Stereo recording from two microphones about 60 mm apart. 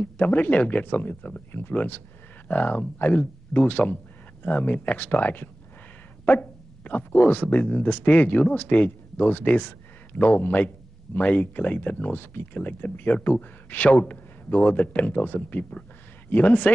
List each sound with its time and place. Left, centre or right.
0.0 s speech: left